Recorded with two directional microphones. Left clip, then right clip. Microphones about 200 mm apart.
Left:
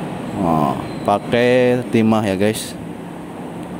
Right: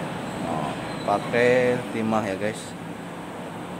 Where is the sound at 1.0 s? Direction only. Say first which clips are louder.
Left 5 dB; 40° left (ahead or behind).